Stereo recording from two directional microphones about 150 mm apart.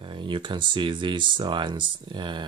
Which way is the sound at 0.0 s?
35° right (ahead or behind).